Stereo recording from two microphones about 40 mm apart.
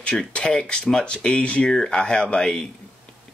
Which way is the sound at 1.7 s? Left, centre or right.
Centre.